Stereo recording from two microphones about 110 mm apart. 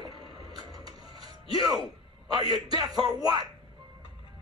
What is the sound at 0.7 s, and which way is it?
Music, 40° right (ahead or behind).